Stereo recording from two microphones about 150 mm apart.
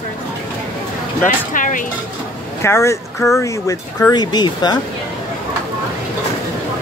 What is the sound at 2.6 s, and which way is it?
Speech, 15° left (ahead or behind).